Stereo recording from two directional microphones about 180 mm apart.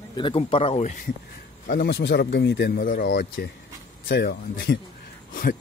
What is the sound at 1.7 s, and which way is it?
Speech, 60° left (ahead or behind).